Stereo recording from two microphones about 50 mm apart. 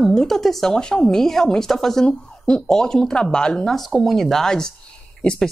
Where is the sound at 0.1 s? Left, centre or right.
Centre.